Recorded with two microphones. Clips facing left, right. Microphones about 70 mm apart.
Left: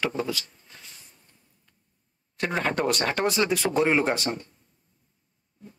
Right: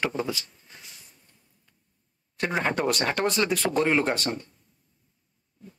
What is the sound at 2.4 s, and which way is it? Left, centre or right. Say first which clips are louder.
Speech: even; centre.